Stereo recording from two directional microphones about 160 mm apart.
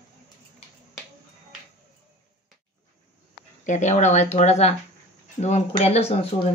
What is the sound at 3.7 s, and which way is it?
Speech, 50° left (ahead or behind).